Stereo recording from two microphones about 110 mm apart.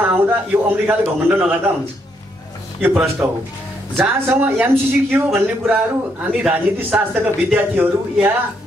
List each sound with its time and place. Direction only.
0.0 s a man's voice: 20° right (ahead or behind)
2.8 s a man's voice: 15° right (ahead or behind)